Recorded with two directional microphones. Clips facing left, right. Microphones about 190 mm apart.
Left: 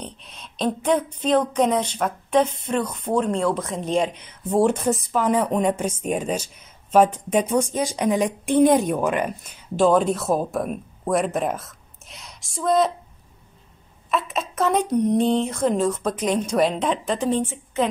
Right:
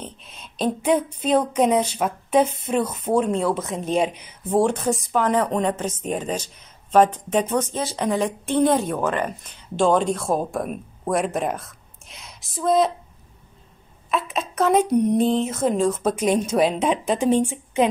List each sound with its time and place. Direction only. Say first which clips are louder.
0.0 s speech: left 1 dB; centre (ahead or behind)
4.6 s speech: left 1 dB; 5° left (ahead or behind)
9.8 s speech: left 1 dB; centre (ahead or behind)
14.1 s a woman's voice: right 1 dB; centre (ahead or behind)